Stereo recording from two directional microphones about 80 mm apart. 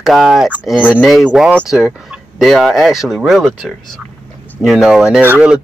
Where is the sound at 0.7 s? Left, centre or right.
Centre.